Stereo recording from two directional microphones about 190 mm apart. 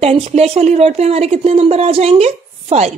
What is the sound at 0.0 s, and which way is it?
A woman's voice, 30° right (ahead or behind).